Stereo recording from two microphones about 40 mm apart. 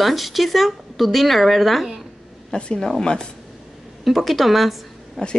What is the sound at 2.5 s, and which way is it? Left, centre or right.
Speech, centre.